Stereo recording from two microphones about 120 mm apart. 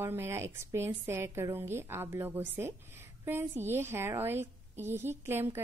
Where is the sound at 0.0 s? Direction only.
20° right (ahead or behind).